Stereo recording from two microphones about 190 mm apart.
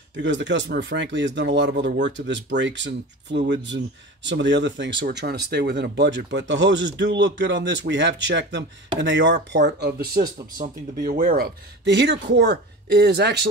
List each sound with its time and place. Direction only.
0.1 s speech: 70° right (ahead or behind)
10.6 s speech: 40° right (ahead or behind); by 13.3 s 60° right (ahead or behind)